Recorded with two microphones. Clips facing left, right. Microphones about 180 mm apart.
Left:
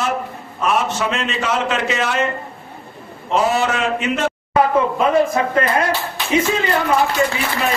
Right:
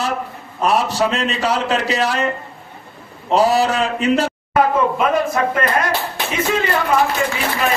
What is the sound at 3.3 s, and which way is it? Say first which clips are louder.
Speech: right 3 dB; 35° right (ahead or behind).